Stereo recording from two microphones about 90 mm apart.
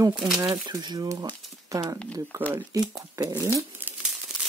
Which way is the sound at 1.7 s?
40° right (ahead or behind).